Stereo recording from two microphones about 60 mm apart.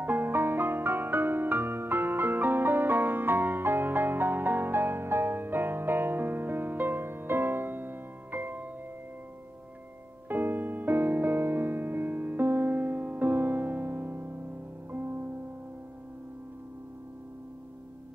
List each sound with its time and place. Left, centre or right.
0.0 s music: right
10.2 s music: right